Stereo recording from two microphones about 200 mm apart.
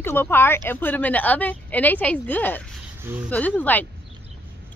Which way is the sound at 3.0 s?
10° right (ahead or behind).